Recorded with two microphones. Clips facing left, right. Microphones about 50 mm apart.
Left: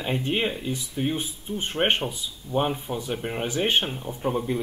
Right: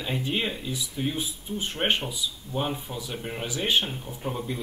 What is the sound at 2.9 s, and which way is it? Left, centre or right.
Speech, left.